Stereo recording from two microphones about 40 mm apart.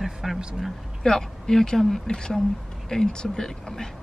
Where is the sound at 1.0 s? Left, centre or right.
Centre.